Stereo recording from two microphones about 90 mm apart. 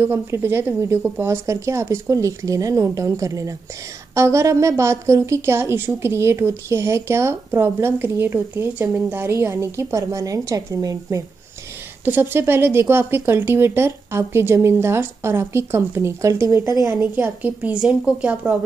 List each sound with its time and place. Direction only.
0.0 s a woman's voice: 25° right (ahead or behind)
12.0 s a woman's voice: 25° right (ahead or behind)
16.9 s a woman's voice: 20° right (ahead or behind)